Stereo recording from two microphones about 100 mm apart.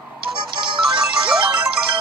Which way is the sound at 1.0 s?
10° right (ahead or behind).